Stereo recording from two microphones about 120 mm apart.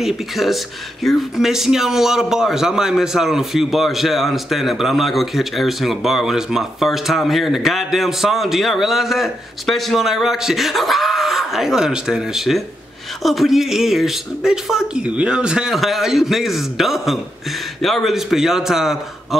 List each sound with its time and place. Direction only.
0.0 s a man's voice: centre (ahead or behind)